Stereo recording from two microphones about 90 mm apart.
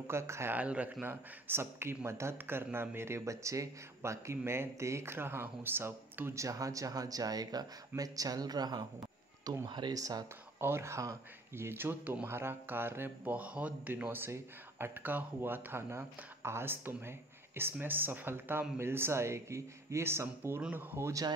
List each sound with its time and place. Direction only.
0.0 s speech: 30° right (ahead or behind)
0.6 s speech: 15° right (ahead or behind)
1.0 s speech: 25° right (ahead or behind); by 9.9 s 60° right (ahead or behind)
9.9 s speech: 40° right (ahead or behind)
10.6 s speech: 30° right (ahead or behind)